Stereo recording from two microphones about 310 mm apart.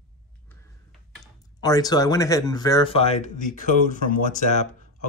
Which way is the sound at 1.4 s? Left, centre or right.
Centre.